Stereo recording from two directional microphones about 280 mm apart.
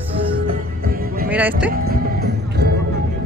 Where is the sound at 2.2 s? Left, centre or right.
Right.